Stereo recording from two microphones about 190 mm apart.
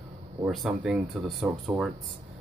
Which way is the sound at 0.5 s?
Centre (ahead or behind).